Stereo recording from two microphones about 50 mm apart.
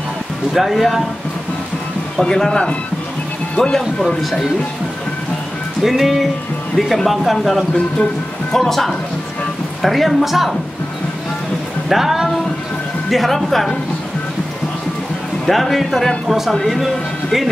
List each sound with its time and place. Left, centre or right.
0.5 s a man's voice: centre
2.2 s speech: centre
4.2 s a man's voice: centre
5.8 s a man's voice: centre
7.7 s speech: left
8.5 s a man's voice: centre
11.9 s a man's voice: centre
15.4 s a man's voice: centre